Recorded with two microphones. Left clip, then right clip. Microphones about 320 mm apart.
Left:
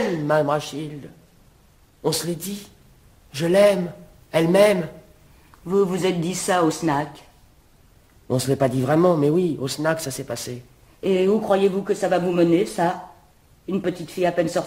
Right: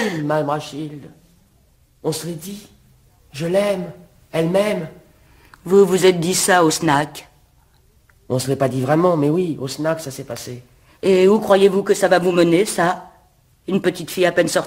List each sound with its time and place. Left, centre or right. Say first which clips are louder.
0.3 s a man's voice: left 2 dB; centre
5.6 s a man's voice: right 8 dB; right
8.3 s a man's voice: right 2 dB; centre
11.0 s a man's voice: right 6 dB; right